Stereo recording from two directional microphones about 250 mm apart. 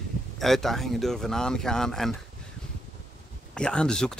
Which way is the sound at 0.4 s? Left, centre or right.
Centre.